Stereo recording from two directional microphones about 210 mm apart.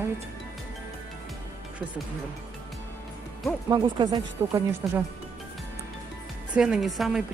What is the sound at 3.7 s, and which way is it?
Speech, 20° right (ahead or behind).